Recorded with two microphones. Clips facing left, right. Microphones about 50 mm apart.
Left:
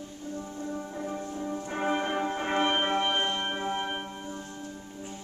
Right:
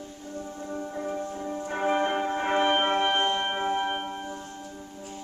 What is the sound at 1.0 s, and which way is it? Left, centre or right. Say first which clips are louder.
Music: right 2 dB; centre.